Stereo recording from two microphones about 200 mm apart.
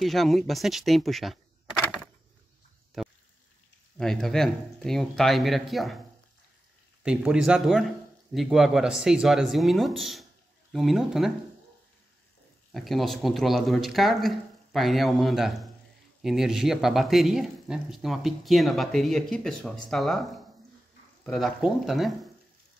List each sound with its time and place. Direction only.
0.0 s speech: centre (ahead or behind)
7.0 s speech: 5° right (ahead or behind)
12.7 s speech: centre (ahead or behind)